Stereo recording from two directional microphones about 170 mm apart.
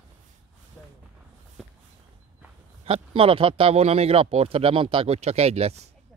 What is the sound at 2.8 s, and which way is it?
Speech, 35° right (ahead or behind).